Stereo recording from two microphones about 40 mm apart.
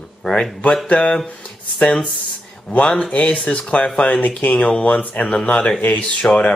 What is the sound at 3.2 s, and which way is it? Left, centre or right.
Speech, left.